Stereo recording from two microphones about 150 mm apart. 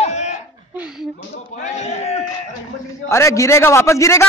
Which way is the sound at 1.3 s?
50° left (ahead or behind).